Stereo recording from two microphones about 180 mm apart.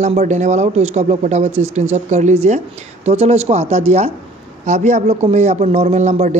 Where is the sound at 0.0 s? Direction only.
40° right (ahead or behind).